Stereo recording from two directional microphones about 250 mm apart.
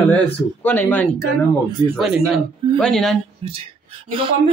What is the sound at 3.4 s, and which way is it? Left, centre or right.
Speech, right.